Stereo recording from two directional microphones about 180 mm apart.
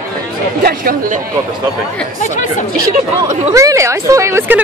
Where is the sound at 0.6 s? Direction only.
55° right (ahead or behind).